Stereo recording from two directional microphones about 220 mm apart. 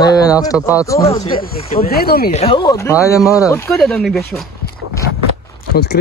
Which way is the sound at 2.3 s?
25° left (ahead or behind).